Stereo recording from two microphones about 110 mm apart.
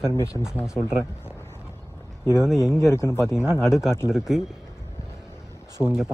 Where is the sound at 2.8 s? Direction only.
25° left (ahead or behind).